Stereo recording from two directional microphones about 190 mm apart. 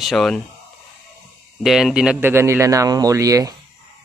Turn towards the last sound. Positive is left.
turn(degrees=-20)  # may be behind; listen again after turning